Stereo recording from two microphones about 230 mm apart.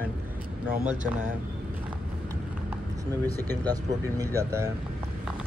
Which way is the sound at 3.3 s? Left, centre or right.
Centre.